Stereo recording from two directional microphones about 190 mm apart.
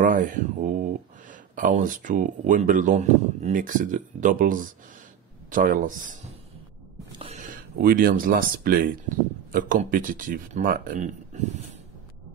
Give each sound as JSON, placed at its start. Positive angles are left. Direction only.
{"t": 0.0, "sound": "speech", "side_deg": -45}
{"t": 7.8, "sound": "speech", "side_deg": -50}